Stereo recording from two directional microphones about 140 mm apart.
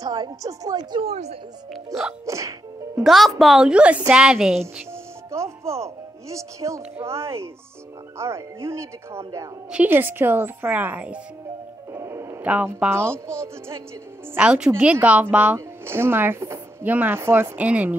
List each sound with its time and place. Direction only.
0.0 s speech: 25° right (ahead or behind)
1.1 s speech: 50° right (ahead or behind)
1.7 s a woman's voice: centre (ahead or behind)
2.2 s sneeze: 20° right (ahead or behind)
3.0 s a woman's voice: centre (ahead or behind)
5.3 s speech: 20° right (ahead or behind)
9.7 s speech: 10° right (ahead or behind)
11.9 s music: 20° right (ahead or behind)
12.4 s speech: 10° right (ahead or behind)
14.3 s speech: 10° right (ahead or behind)